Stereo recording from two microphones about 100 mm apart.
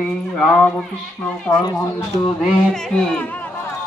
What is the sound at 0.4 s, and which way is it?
Speech, 5° left (ahead or behind).